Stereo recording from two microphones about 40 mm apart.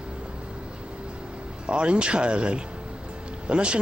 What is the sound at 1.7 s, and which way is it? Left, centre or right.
Speech, right.